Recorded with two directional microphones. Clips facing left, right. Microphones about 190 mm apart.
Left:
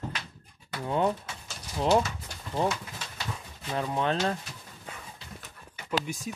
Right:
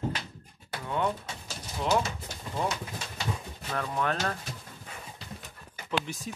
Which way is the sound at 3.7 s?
25° left (ahead or behind).